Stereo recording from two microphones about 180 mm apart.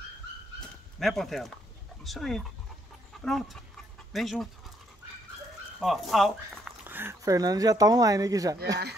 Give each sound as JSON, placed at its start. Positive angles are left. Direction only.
{"t": 0.6, "sound": "dog", "side_deg": 0}
{"t": 2.0, "sound": "speech", "side_deg": 0}
{"t": 5.8, "sound": "speech", "side_deg": 0}